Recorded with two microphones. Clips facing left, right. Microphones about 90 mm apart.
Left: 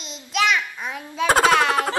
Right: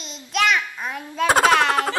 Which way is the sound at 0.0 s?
Centre (ahead or behind).